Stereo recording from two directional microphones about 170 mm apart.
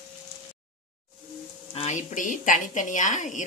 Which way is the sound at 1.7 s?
45° left (ahead or behind).